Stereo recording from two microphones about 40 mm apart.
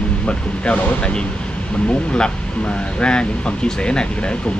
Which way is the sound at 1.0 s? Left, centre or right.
Left.